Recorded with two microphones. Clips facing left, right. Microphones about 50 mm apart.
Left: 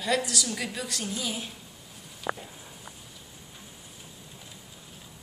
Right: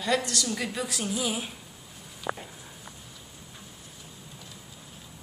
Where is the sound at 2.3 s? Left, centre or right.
Left.